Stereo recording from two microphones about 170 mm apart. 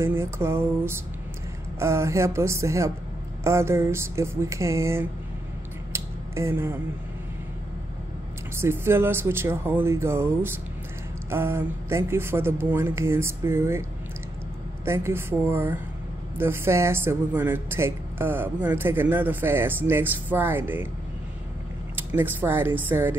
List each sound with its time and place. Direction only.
0.0 s speech: 15° right (ahead or behind)
5.9 s a sound: 15° right (ahead or behind)
8.5 s speech: 15° right (ahead or behind)
14.9 s speech: 15° right (ahead or behind)
21.9 s speech: 10° right (ahead or behind)